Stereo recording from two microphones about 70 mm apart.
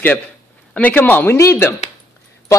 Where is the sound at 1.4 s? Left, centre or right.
Left.